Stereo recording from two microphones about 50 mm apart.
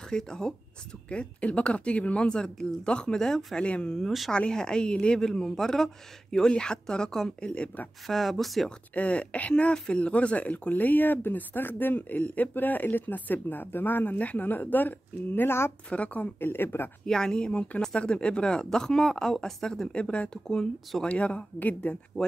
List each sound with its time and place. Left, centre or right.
0.1 s speech: centre
7.4 s speech: left
8.1 s speech: centre
8.9 s speech: left
14.1 s speech: left
15.9 s speech: left
16.3 s speech: left
17.0 s speech: centre; by 21.9 s left
22.2 s speech: centre